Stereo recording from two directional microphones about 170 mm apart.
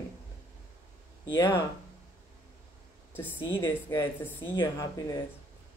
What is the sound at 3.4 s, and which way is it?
Speech, 30° left (ahead or behind).